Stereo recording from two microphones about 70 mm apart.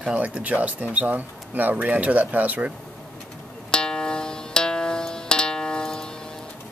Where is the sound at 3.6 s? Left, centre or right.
Centre.